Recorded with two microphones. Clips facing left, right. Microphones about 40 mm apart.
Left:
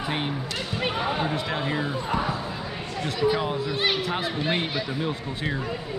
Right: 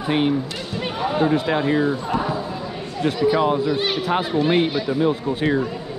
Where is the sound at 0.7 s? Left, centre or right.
Centre.